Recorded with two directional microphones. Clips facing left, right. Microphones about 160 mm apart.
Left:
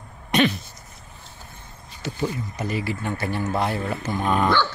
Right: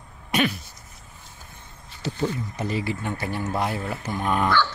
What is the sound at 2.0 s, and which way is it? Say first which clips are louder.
Speech: even; 35° right (ahead or behind).